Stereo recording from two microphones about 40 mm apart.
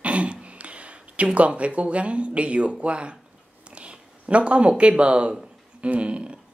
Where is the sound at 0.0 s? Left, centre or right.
Right.